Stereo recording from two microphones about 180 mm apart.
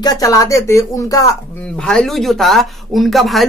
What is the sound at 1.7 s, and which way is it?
Speech, 5° left (ahead or behind).